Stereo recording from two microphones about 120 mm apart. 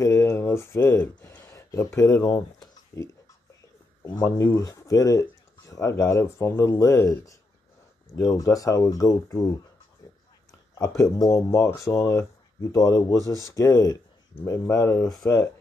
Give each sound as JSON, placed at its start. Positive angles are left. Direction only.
{"t": 0.0, "sound": "speech", "side_deg": 25}
{"t": 4.0, "sound": "speech", "side_deg": 25}
{"t": 10.0, "sound": "dog", "side_deg": 30}
{"t": 10.8, "sound": "speech", "side_deg": 30}
{"t": 13.2, "sound": "speech", "side_deg": -30}
{"t": 13.6, "sound": "speech", "side_deg": 30}